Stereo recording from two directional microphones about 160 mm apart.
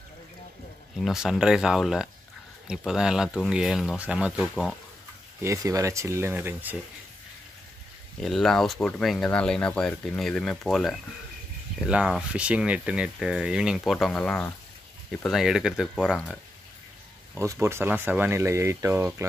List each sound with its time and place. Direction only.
0.9 s speech: centre (ahead or behind)
5.4 s speech: 20° right (ahead or behind)
8.2 s speech: centre (ahead or behind)
17.4 s speech: 20° right (ahead or behind)